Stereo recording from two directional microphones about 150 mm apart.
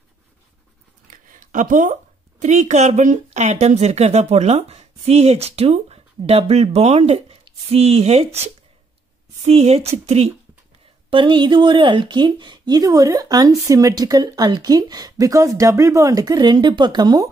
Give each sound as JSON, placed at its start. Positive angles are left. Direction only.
{"t": 1.1, "sound": "a woman's voice", "side_deg": -60}
{"t": 9.5, "sound": "speech", "side_deg": -40}
{"t": 11.1, "sound": "speech", "side_deg": -35}